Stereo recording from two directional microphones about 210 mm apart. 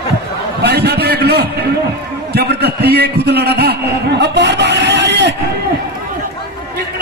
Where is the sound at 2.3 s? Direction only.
50° right (ahead or behind).